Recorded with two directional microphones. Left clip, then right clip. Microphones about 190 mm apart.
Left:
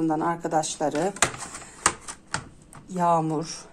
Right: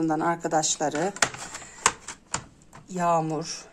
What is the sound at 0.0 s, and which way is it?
A woman's voice, 25° right (ahead or behind).